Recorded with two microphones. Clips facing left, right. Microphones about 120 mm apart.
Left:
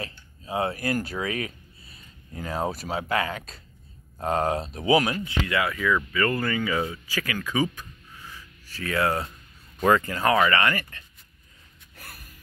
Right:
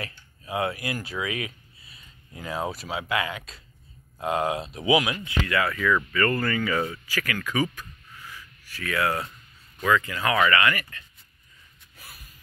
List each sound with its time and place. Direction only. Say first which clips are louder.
0.0 s speech: left 1 dB; 30° left (ahead or behind)
5.5 s speech: right 1 dB; 15° left (ahead or behind)
9.8 s speech: left 3 dB; 45° left (ahead or behind)
11.9 s a sound: left 3 dB; 70° left (ahead or behind)